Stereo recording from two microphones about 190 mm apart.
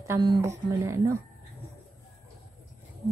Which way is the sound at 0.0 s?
20° right (ahead or behind).